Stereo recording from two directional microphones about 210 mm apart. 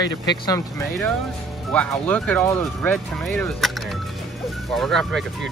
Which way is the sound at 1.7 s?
5° left (ahead or behind).